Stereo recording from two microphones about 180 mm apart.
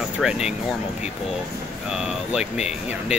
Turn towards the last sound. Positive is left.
turn(degrees=-5)  # may be behind; listen again after turning